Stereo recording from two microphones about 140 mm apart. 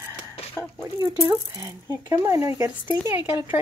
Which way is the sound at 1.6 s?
25° right (ahead or behind).